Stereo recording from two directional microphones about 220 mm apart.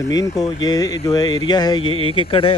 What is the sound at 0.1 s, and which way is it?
Speech, 15° left (ahead or behind).